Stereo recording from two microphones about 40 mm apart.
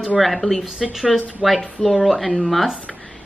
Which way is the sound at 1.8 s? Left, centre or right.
Centre.